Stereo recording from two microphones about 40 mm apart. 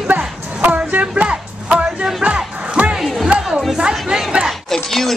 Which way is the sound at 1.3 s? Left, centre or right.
Right.